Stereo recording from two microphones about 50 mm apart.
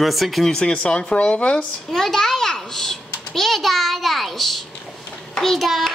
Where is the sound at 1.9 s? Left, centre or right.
Centre.